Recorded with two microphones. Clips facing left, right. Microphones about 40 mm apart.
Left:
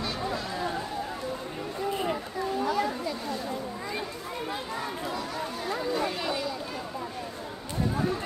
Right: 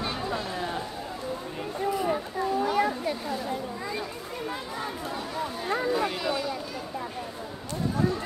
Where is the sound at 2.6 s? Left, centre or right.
Right.